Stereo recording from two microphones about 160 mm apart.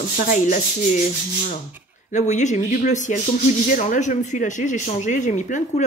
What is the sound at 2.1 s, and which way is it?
A woman's voice, 50° left (ahead or behind).